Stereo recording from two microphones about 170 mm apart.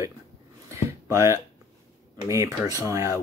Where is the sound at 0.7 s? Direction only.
15° right (ahead or behind).